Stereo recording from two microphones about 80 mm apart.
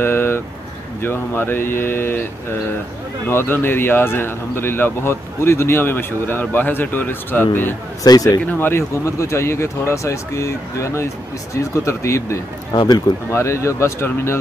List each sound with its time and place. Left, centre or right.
0.0 s a sound: left
1.0 s speech: left
3.3 s speech: left
8.0 s speech: left
8.5 s speech: left
9.0 s speech: left
12.7 s speech: left
13.3 s speech: left